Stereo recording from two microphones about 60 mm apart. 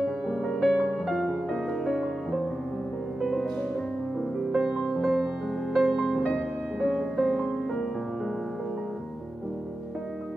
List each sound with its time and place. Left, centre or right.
0.3 s music: centre
1.5 s music: centre
3.2 s music: centre
4.5 s music: centre
6.2 s music: centre
6.9 s music: centre